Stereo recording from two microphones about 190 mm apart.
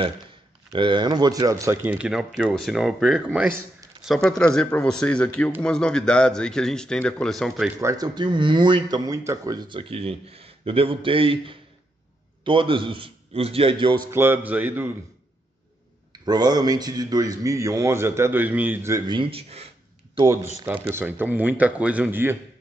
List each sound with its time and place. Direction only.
0.7 s a man's voice: 25° right (ahead or behind); by 7.7 s centre (ahead or behind)
7.8 s speech: 20° right (ahead or behind)
14.1 s speech: 10° right (ahead or behind)
16.1 s speech: 20° right (ahead or behind)
20.9 s speech: 10° right (ahead or behind)